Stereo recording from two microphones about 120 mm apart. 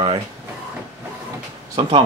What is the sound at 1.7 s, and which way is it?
Speech, 50° right (ahead or behind).